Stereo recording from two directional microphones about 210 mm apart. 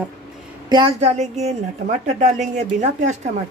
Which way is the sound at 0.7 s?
25° right (ahead or behind).